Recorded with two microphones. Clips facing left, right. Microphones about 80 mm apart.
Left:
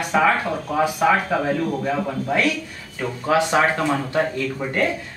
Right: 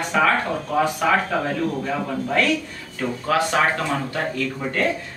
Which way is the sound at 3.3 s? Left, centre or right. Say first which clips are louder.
Left 2 dB; centre.